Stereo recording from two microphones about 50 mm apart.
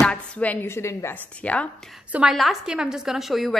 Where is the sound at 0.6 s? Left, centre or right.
Left.